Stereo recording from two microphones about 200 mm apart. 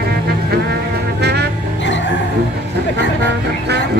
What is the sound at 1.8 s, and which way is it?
Music, 65° left (ahead or behind).